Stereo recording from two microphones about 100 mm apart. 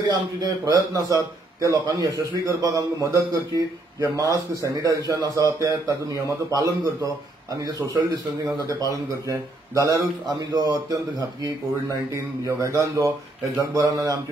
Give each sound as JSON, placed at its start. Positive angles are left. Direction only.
{"t": 0.0, "sound": "a man's voice", "side_deg": -40}